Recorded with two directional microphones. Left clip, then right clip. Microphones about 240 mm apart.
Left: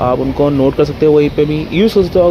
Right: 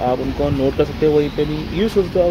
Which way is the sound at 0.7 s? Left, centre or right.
Left.